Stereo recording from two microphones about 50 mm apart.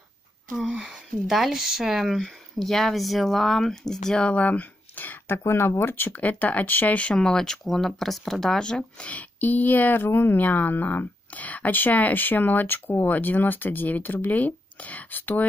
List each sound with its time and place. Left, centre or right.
0.6 s speech: centre
4.3 s a sound: left
5.4 s speech: left
6.1 s speech: left
7.2 s speech: centre
9.1 s speech: left